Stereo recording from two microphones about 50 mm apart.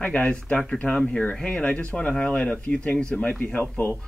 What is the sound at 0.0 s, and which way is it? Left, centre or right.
Speech, left.